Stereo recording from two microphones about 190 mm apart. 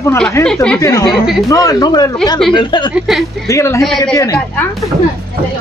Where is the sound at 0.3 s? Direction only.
10° left (ahead or behind); by 2.9 s 25° left (ahead or behind).